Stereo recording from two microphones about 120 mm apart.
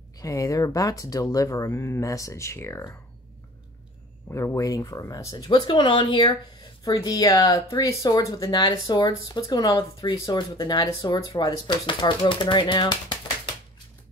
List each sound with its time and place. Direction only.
0.2 s speech: 30° left (ahead or behind)
4.3 s speech: 25° left (ahead or behind)
8.5 s speech: 40° left (ahead or behind)